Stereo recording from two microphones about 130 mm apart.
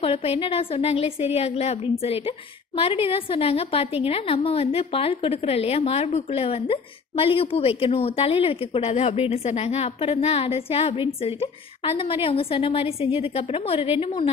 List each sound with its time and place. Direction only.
0.0 s a woman's voice: 50° left (ahead or behind)